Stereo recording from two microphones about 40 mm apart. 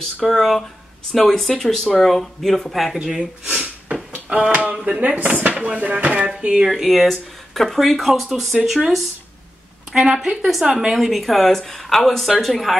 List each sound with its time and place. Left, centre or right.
0.3 s speech: centre
4.1 s a sound: right
4.8 s speech: right
6.3 s speech: centre
6.7 s speech: centre
9.9 s a woman's voice: centre
10.9 s speech: centre